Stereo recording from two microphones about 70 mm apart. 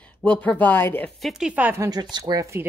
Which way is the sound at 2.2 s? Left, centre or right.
Right.